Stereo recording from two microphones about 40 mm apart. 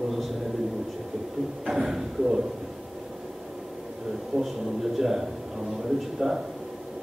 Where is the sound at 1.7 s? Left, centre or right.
Centre.